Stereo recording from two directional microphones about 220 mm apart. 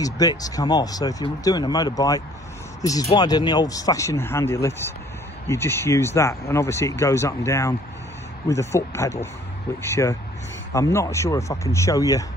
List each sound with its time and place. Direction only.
0.0 s speech: 15° left (ahead or behind)